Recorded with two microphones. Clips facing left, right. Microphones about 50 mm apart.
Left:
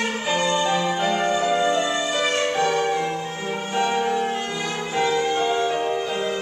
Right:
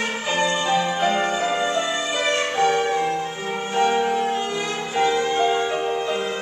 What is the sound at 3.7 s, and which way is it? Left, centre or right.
Music, centre.